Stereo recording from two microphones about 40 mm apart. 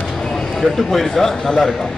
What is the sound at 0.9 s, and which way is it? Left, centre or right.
Speech, centre.